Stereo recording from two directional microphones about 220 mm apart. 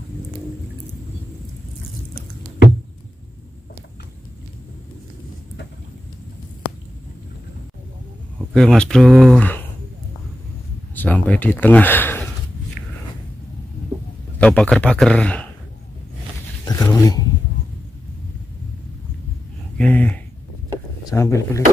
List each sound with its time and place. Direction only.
8.5 s speech: 5° left (ahead or behind)
11.0 s speech: 5° left (ahead or behind)
14.4 s speech: 5° left (ahead or behind)
16.6 s speech: 15° left (ahead or behind)
19.8 s speech: 5° left (ahead or behind)